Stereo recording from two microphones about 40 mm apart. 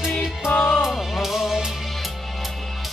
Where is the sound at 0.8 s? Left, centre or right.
Centre.